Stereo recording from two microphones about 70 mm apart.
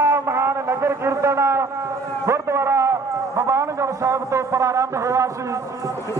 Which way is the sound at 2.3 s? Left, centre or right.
Right.